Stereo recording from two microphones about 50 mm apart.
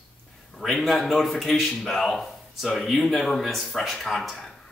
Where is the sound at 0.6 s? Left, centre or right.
Centre.